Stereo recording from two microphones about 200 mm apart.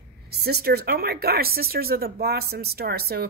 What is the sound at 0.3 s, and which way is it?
Speech, 50° right (ahead or behind).